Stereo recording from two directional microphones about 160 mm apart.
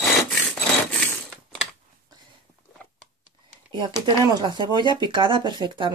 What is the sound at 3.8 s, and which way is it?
Speech, 25° right (ahead or behind).